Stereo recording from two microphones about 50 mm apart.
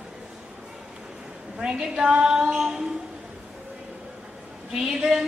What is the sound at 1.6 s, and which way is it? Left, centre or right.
A woman's voice, centre.